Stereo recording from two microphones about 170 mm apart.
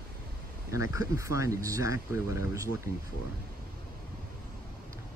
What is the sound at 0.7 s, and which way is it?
Speech, 20° right (ahead or behind).